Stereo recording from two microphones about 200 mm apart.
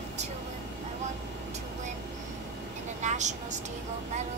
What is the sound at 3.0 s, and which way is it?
Vehicle, 35° right (ahead or behind).